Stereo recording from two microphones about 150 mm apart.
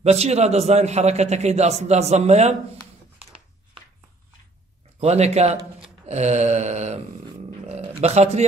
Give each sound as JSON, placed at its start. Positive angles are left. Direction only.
{"t": 0.0, "sound": "a man's voice", "side_deg": -45}
{"t": 5.0, "sound": "a man's voice", "side_deg": -45}
{"t": 5.8, "sound": "a sound", "side_deg": -45}
{"t": 8.0, "sound": "a man's voice", "side_deg": -45}